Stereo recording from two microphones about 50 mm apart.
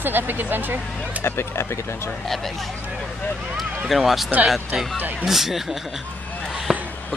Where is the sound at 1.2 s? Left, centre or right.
Left.